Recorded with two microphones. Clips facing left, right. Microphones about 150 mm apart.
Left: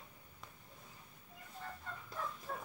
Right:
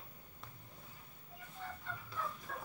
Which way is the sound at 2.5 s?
30° left (ahead or behind).